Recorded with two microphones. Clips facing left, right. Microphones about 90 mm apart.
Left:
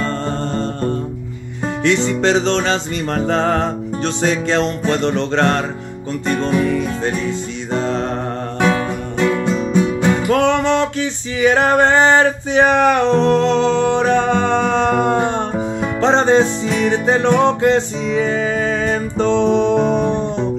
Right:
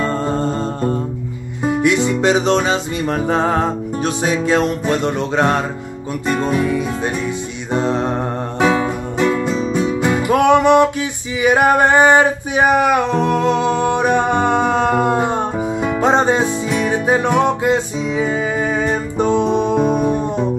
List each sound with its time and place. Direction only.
0.0 s music: 10° right (ahead or behind)